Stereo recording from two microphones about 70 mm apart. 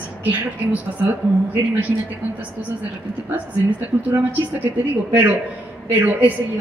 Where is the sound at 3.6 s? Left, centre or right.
Right.